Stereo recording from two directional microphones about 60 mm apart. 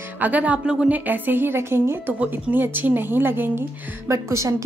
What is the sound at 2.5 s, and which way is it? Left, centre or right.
A woman's voice, right.